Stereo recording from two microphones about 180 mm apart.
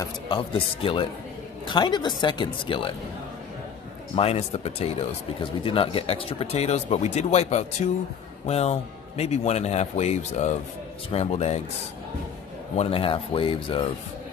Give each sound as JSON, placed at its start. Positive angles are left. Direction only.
{"t": 0.0, "sound": "speech", "side_deg": 30}
{"t": 4.1, "sound": "speech", "side_deg": 35}
{"t": 12.7, "sound": "speech", "side_deg": 30}